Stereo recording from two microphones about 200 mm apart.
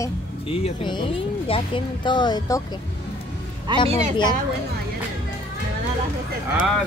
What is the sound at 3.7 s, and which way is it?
Speech, 25° right (ahead or behind).